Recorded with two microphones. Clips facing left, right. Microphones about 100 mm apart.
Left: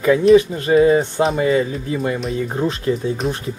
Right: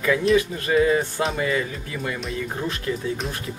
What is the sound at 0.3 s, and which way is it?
Speech, 25° left (ahead or behind).